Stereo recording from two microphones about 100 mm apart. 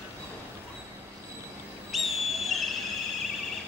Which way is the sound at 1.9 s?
Centre (ahead or behind).